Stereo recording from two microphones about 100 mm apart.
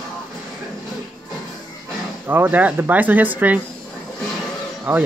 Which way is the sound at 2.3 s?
20° right (ahead or behind).